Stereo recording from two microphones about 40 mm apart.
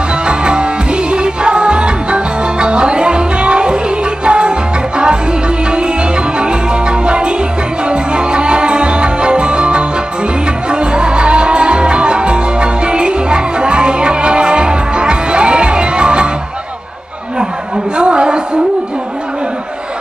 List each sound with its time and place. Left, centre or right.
0.3 s music: right
6.3 s music: right
17.9 s a sound: right